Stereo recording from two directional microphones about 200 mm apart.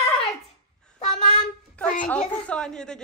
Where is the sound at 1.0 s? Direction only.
35° left (ahead or behind).